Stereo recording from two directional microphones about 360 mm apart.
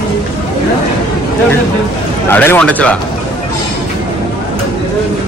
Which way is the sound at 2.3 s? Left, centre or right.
Centre.